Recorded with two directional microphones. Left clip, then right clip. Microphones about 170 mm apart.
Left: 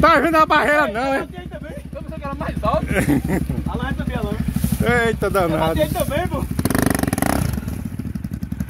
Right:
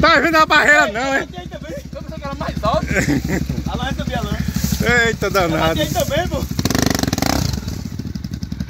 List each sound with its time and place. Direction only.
0.0 s speech: 10° left (ahead or behind)
2.4 s speech: 10° left (ahead or behind)
4.8 s speech: 10° left (ahead or behind)
6.5 s a sound: 20° left (ahead or behind)